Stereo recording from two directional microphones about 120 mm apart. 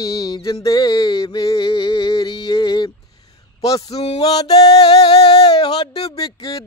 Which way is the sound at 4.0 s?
60° left (ahead or behind).